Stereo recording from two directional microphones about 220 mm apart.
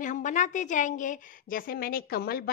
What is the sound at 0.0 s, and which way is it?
A woman's voice, 35° left (ahead or behind).